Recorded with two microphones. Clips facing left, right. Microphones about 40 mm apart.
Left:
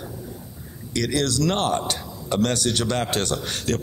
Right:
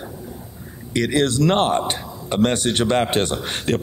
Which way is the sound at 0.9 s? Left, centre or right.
Right.